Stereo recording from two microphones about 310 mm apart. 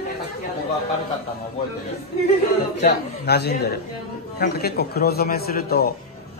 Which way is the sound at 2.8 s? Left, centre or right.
Left.